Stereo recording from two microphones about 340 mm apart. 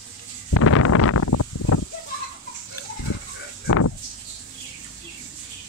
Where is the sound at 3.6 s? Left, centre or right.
Left.